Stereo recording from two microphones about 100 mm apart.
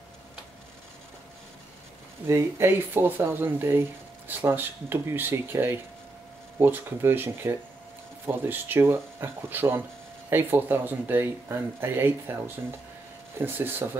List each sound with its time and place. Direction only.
2.2 s speech: 25° right (ahead or behind)